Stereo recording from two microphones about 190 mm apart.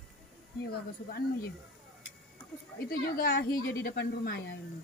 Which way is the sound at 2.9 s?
50° left (ahead or behind).